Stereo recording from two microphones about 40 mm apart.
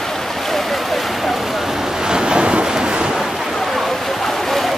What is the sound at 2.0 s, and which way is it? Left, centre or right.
Waves, centre.